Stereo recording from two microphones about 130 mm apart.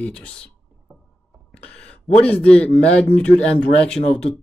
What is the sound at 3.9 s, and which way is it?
Speech, 55° left (ahead or behind).